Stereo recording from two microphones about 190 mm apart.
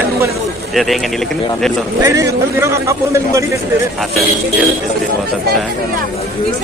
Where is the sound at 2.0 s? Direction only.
15° right (ahead or behind).